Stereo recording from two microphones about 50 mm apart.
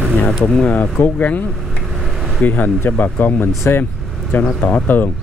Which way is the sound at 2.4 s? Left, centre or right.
Left.